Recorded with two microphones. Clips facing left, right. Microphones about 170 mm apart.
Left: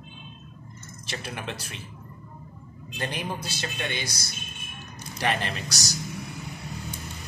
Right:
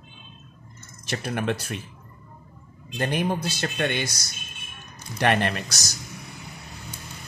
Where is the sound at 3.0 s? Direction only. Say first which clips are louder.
Right 7 dB; 55° right (ahead or behind).